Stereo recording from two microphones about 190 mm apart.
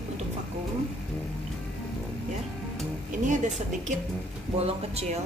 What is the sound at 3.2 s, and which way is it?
Speech, 40° right (ahead or behind).